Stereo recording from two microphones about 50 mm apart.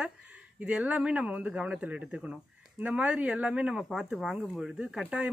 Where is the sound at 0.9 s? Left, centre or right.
Right; by 4.1 s centre.